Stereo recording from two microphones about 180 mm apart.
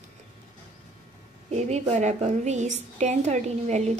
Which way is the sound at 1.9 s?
40° right (ahead or behind).